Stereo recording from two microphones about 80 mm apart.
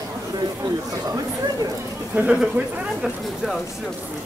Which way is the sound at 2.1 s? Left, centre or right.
Centre.